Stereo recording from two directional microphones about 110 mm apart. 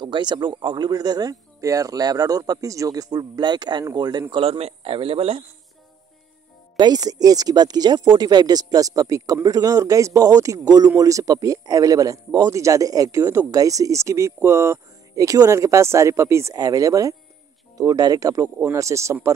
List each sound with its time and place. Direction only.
0.0 s speech: 45° right (ahead or behind)
4.4 s a man's voice: 65° right (ahead or behind)
6.8 s speech: 35° right (ahead or behind)